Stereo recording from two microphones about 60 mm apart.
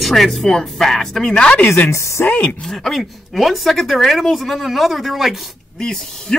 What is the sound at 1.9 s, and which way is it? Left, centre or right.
Speech, left.